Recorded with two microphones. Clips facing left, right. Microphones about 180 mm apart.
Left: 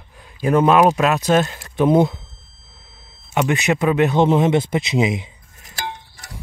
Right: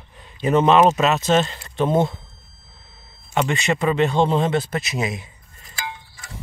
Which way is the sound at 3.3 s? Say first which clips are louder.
Left 3 dB; 10° left (ahead or behind).